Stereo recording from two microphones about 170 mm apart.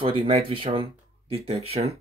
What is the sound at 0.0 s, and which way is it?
Speech, 30° right (ahead or behind).